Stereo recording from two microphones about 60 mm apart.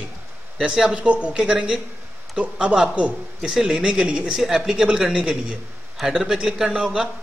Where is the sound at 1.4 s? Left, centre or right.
Centre.